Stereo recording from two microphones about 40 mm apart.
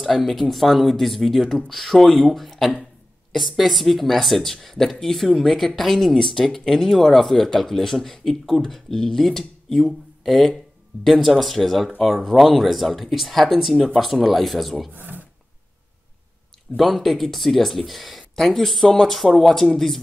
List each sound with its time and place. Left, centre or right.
0.0 s a man's voice: centre
14.9 s speech: right
16.7 s speech: centre